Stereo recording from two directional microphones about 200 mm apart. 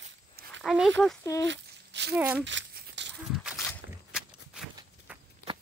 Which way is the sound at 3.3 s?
Centre (ahead or behind).